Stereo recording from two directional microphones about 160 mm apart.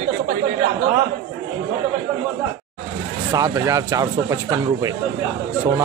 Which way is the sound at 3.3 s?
20° right (ahead or behind).